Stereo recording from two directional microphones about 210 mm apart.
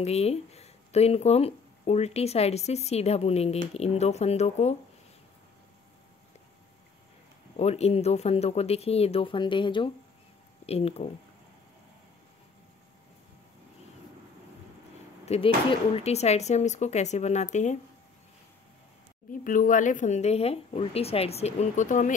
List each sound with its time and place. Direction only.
0.0 s a woman's voice: 30° left (ahead or behind)
7.5 s speech: 30° left (ahead or behind)
15.2 s a woman's voice: 30° left (ahead or behind)
19.4 s a woman's voice: 40° left (ahead or behind)